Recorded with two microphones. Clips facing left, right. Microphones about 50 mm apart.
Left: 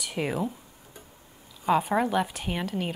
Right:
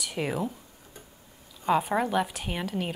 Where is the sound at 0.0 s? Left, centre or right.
Centre.